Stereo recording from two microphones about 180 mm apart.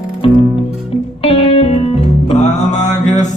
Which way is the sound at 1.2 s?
35° left (ahead or behind).